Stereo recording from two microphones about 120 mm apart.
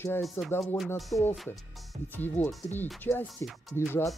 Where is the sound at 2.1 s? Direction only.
15° left (ahead or behind).